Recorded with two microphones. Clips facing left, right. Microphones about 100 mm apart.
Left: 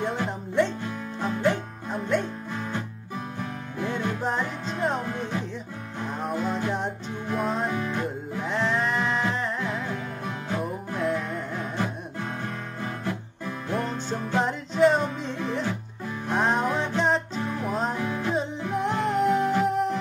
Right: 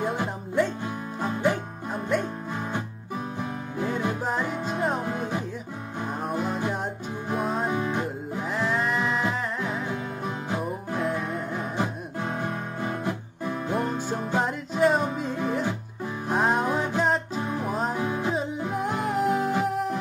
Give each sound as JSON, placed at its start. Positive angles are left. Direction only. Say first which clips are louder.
{"t": 0.0, "sound": "music", "louder": "even", "side_deg": -10}
{"t": 3.8, "sound": "music", "louder": "even", "side_deg": -10}
{"t": 8.4, "sound": "music", "louder": "left 1 dB", "side_deg": -5}
{"t": 17.6, "sound": "music", "louder": "left 2 dB", "side_deg": -5}
{"t": 17.9, "sound": "music", "louder": "right 1 dB", "side_deg": -15}
{"t": 18.6, "sound": "music", "louder": "left 1 dB", "side_deg": -5}